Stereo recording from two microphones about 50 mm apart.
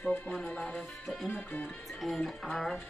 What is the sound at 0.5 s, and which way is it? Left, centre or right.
Music, centre.